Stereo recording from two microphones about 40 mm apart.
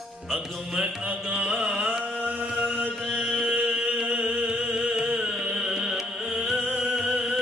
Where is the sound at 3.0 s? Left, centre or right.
Centre.